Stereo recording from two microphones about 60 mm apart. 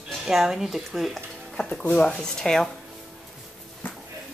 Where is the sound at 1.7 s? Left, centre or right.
Left.